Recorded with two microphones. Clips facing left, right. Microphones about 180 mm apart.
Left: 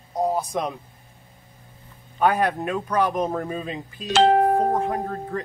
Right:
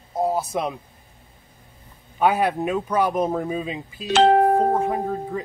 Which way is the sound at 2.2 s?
5° right (ahead or behind).